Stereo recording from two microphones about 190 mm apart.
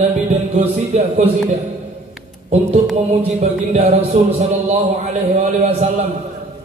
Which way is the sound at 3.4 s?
30° right (ahead or behind).